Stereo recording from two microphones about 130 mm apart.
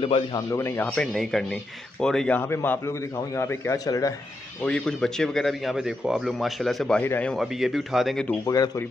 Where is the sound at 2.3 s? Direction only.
15° left (ahead or behind).